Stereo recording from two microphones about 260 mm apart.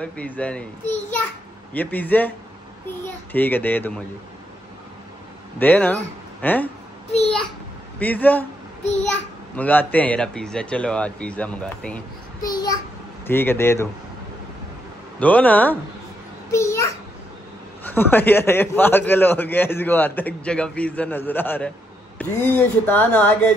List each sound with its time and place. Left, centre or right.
0.0 s a man's voice: centre
5.6 s a man's voice: centre
7.1 s a sound: left
8.0 s a man's voice: centre
8.8 s a sound: left
9.6 s speech: centre
12.4 s child singing: centre
13.3 s a man's voice: centre
15.1 s speech: centre
16.5 s a sound: centre
17.8 s a man's voice: centre